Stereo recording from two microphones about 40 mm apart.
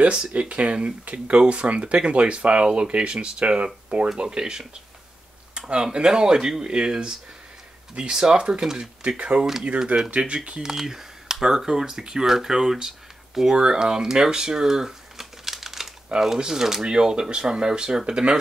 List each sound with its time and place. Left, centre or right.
0.0 s speech: right
4.2 s speech: centre
5.7 s speech: right
10.6 s speech: centre
12.8 s a sound: centre
13.6 s speech: right